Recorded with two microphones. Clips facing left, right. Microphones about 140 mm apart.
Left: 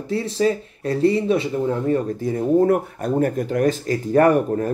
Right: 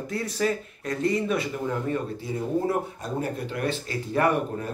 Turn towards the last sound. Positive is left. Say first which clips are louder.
# left 8 dB
turn(degrees=45)  # may be behind; listen again after turning